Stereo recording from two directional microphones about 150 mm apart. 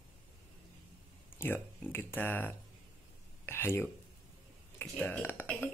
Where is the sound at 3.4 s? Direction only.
15° left (ahead or behind).